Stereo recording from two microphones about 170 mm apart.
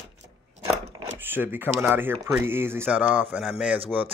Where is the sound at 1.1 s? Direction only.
10° right (ahead or behind).